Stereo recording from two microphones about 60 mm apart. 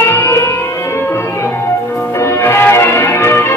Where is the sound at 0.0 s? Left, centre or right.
Left.